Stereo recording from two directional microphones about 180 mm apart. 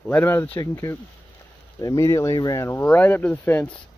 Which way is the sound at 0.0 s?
10° left (ahead or behind).